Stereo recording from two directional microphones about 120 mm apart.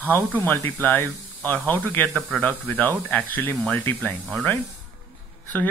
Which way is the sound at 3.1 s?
15° left (ahead or behind).